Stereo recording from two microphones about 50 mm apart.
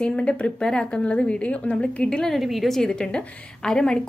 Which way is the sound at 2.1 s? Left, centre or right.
Centre.